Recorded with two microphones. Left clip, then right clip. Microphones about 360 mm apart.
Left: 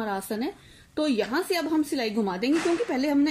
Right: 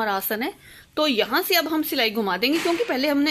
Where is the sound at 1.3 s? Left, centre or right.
Right.